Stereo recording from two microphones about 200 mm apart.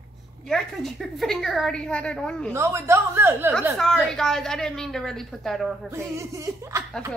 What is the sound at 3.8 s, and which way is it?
A woman's voice, centre (ahead or behind).